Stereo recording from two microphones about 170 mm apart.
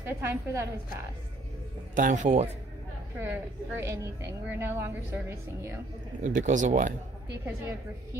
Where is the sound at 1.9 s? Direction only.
50° right (ahead or behind).